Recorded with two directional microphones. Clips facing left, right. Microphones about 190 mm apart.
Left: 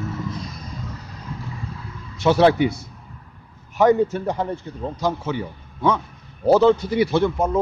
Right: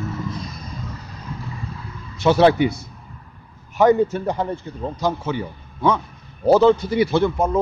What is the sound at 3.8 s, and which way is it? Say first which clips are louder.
A man's voice: right 1 dB; 25° right (ahead or behind).